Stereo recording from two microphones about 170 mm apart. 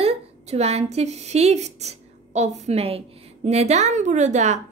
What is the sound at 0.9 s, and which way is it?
A woman's voice, 40° right (ahead or behind).